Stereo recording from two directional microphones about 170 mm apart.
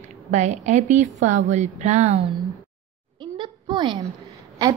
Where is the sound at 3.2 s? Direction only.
25° right (ahead or behind).